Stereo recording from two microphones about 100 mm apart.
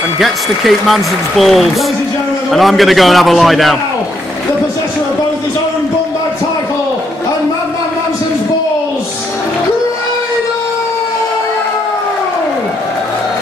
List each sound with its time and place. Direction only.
0.2 s speech: centre (ahead or behind)